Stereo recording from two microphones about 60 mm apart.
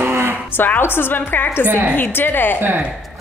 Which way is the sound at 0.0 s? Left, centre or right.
Right.